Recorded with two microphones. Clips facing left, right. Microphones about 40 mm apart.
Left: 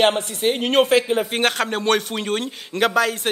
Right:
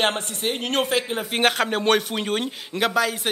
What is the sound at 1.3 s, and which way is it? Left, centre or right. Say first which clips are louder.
A woman's voice: even; centre.